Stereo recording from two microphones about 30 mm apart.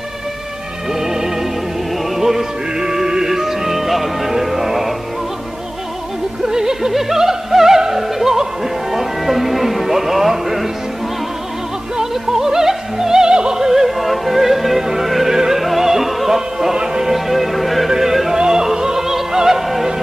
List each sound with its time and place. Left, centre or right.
0.9 s music: centre
6.4 s music: centre
6.9 s opera: centre
8.9 s music: centre
12.0 s opera: centre
13.8 s music: centre
16.3 s music: centre
16.7 s music: right
17.0 s music: centre